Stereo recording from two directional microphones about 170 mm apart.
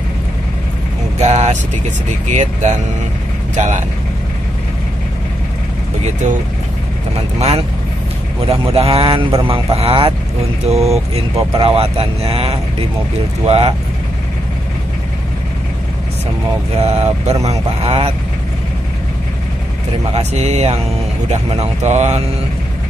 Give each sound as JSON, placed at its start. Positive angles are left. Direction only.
{"t": 1.2, "sound": "speech", "side_deg": -40}
{"t": 7.3, "sound": "speech", "side_deg": -40}
{"t": 16.7, "sound": "speech", "side_deg": -40}
{"t": 20.2, "sound": "speech", "side_deg": -40}